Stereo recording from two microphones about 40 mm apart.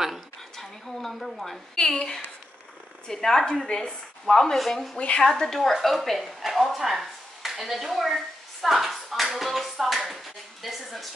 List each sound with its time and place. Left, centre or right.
0.6 s a sound: centre
1.8 s a woman's voice: centre
3.6 s speech: left
4.3 s a woman's voice: centre
4.6 s a woman's voice: centre
4.9 s speech: left
5.2 s a woman's voice: centre